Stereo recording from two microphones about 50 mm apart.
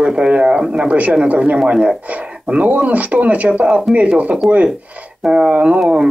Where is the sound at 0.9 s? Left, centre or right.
Right.